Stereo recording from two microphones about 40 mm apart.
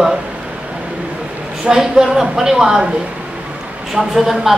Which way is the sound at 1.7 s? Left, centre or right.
Centre.